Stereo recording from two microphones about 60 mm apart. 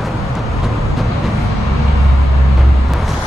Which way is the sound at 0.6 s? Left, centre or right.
Centre.